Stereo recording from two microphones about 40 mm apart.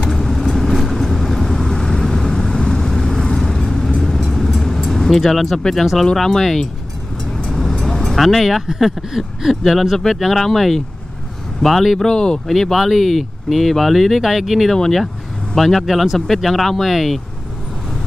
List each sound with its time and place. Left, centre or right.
0.0 s vehicle: centre
5.6 s speech: centre
7.5 s music: centre
8.7 s a sound: centre
9.7 s speech: centre
12.0 s speech: left
12.4 s speech: centre